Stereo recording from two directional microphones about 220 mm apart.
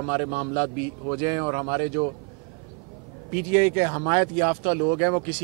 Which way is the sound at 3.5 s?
10° right (ahead or behind).